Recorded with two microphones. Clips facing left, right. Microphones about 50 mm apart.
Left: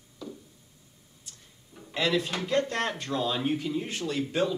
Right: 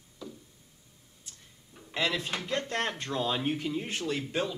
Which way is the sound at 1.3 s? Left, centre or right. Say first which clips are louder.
Left 1 dB; centre.